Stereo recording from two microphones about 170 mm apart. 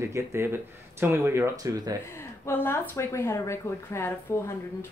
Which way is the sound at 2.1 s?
15° left (ahead or behind).